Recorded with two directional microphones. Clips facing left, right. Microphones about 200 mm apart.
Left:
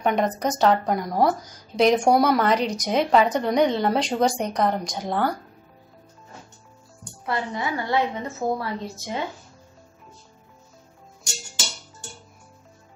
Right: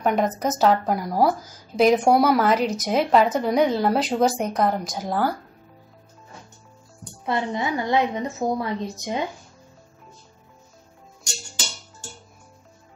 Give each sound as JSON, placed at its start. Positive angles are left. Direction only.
{"t": 0.0, "sound": "a woman's voice", "side_deg": -5}
{"t": 7.2, "sound": "a woman's voice", "side_deg": -20}